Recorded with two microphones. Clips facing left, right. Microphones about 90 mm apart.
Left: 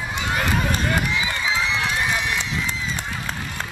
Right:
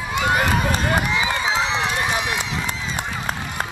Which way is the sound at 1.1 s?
35° right (ahead or behind).